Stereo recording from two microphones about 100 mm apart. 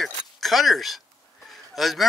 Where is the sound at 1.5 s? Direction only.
Centre (ahead or behind).